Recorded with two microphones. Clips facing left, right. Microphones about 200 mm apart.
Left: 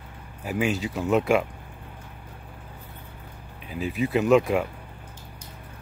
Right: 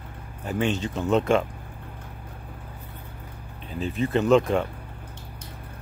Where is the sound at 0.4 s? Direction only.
5° left (ahead or behind).